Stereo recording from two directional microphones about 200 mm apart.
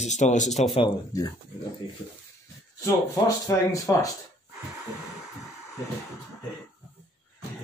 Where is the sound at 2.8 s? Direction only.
15° left (ahead or behind).